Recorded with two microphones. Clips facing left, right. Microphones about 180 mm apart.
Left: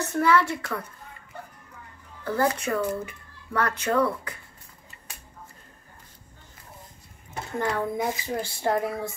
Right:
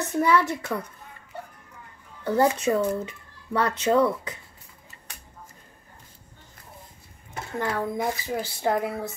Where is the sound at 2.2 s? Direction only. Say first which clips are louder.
Right 3 dB; 20° right (ahead or behind).